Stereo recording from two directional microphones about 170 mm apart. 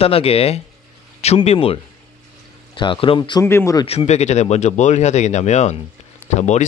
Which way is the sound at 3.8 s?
40° left (ahead or behind).